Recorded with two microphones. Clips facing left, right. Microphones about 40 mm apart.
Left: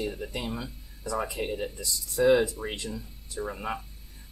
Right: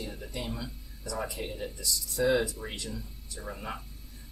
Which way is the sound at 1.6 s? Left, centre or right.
Centre.